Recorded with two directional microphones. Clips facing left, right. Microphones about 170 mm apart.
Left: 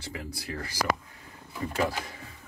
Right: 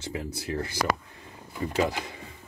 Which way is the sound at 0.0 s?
20° right (ahead or behind).